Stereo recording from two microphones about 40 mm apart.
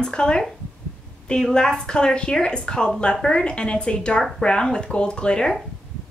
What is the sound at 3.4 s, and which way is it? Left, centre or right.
A woman's voice, left.